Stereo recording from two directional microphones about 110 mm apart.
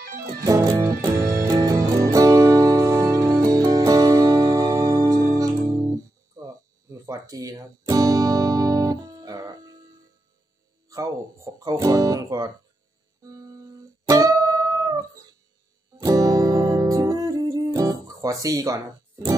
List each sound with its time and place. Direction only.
0.2 s music: 25° right (ahead or behind)
5.1 s guitar: 35° right (ahead or behind)
10.9 s speech: 30° right (ahead or behind)
14.0 s music: 30° right (ahead or behind)
16.1 s music: 35° right (ahead or behind)